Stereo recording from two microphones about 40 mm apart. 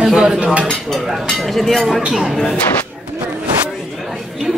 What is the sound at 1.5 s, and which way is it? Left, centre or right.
Speech, centre.